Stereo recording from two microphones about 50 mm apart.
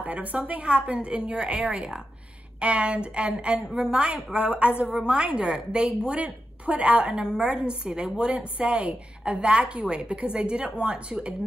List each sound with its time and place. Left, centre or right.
0.0 s a woman's voice: right
0.7 s a woman's voice: right